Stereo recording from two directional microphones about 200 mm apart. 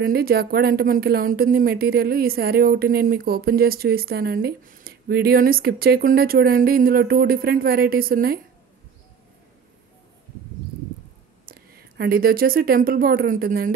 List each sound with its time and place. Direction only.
0.0 s speech: 50° right (ahead or behind)
11.4 s speech: 50° right (ahead or behind)